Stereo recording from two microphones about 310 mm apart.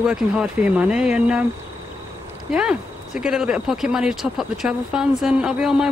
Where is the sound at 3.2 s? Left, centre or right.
Centre.